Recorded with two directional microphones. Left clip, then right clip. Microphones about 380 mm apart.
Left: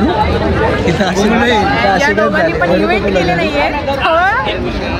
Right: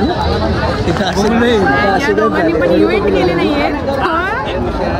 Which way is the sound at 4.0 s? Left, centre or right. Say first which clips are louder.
Left 6 dB; centre.